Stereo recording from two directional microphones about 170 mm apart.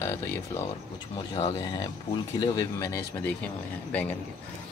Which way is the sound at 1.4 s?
30° left (ahead or behind).